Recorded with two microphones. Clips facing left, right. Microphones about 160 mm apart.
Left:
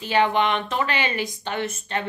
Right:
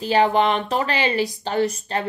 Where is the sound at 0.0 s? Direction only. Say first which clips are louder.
Right 3 dB; 35° right (ahead or behind).